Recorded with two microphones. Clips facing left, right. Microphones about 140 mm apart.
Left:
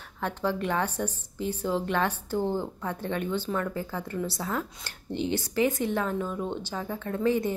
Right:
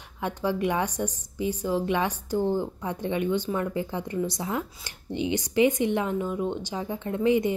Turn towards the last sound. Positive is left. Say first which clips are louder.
# right 3 dB
turn(degrees=-15)  # may be behind; listen again after turning